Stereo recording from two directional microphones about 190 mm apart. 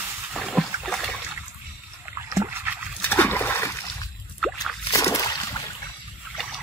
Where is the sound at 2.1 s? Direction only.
15° right (ahead or behind).